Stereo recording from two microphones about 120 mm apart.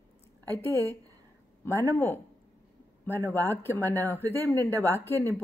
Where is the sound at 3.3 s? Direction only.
20° left (ahead or behind).